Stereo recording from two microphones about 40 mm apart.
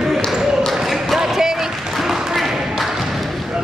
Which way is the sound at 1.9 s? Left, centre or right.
Centre.